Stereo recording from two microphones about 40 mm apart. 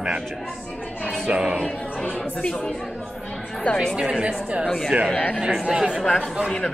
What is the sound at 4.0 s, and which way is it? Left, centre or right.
Speech, right.